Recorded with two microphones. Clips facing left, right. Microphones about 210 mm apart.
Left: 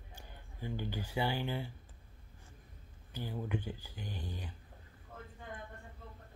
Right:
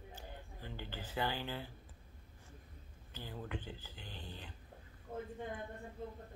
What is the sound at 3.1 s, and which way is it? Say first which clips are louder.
Speech: left 6 dB; 10° left (ahead or behind).